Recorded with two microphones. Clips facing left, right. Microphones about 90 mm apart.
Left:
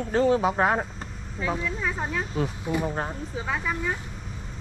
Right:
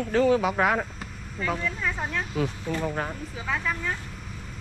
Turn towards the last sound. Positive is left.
turn(degrees=10)  # may be behind; listen again after turning